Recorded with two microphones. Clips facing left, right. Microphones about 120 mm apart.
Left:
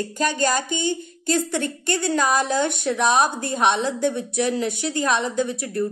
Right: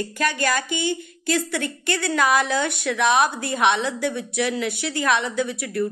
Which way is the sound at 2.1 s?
35° left (ahead or behind).